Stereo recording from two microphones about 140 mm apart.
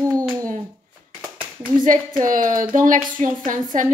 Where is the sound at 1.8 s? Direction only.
70° right (ahead or behind).